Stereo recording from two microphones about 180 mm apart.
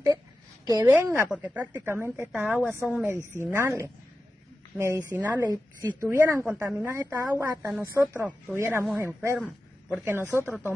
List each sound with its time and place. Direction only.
0.7 s a woman's voice: 20° right (ahead or behind); by 3.1 s centre (ahead or behind)
3.3 s a woman's voice: 15° right (ahead or behind)